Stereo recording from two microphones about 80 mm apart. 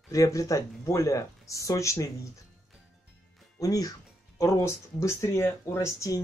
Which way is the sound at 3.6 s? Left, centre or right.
Left.